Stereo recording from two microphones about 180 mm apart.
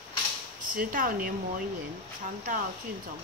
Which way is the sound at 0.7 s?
50° right (ahead or behind).